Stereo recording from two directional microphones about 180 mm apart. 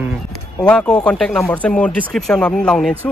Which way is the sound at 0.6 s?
5° left (ahead or behind).